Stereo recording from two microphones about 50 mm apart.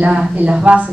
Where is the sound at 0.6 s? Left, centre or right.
Right.